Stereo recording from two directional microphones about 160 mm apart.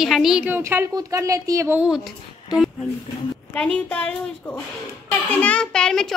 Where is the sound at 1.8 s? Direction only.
5° right (ahead or behind).